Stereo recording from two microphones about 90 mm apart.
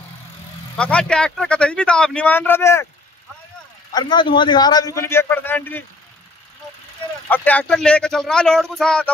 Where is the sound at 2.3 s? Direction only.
25° left (ahead or behind).